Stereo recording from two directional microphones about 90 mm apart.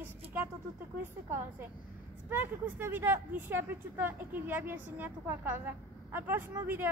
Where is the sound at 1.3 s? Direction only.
25° right (ahead or behind).